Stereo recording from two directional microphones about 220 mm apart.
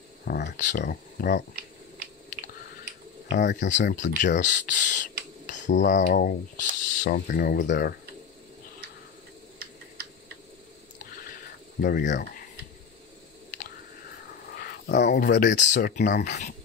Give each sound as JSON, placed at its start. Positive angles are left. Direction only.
{"t": 0.2, "sound": "speech", "side_deg": 45}
{"t": 3.3, "sound": "speech", "side_deg": 50}
{"t": 3.5, "sound": "speech", "side_deg": 35}
{"t": 11.8, "sound": "speech", "side_deg": 40}
{"t": 14.5, "sound": "a sound", "side_deg": 45}
{"t": 15.5, "sound": "speech", "side_deg": 35}